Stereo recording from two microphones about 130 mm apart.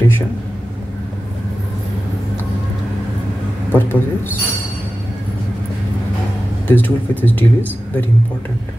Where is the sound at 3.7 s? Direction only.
15° left (ahead or behind).